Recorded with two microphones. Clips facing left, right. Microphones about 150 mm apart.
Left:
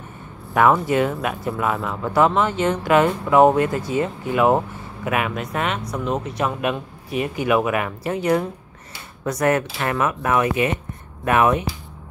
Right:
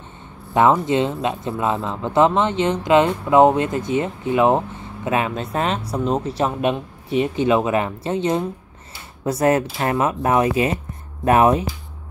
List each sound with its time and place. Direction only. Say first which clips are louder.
0.6 s speech: right 1 dB; 25° right (ahead or behind)